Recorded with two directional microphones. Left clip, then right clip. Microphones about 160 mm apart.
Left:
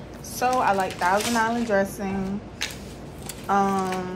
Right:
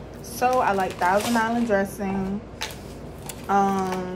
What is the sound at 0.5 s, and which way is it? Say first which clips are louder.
Speech: left 1 dB; 10° right (ahead or behind).